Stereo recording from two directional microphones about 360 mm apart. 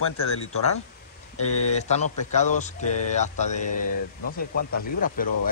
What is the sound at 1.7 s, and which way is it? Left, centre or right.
Speech, centre.